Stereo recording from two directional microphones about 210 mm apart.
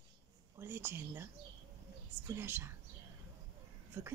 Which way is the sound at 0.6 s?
10° right (ahead or behind).